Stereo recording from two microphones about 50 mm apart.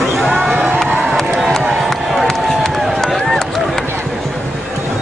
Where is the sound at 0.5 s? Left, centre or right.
Right.